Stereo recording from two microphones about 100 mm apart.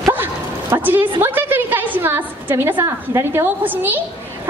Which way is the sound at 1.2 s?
20° right (ahead or behind).